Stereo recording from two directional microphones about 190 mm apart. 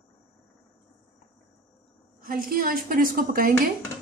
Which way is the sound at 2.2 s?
50° right (ahead or behind).